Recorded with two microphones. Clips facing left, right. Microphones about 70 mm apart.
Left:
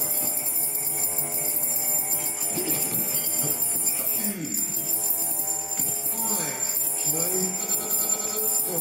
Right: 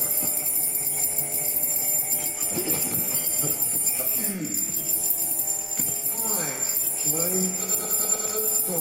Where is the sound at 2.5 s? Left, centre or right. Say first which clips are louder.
Right 1 dB; centre.